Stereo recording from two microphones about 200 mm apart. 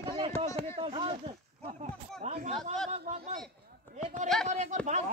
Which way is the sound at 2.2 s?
35° right (ahead or behind).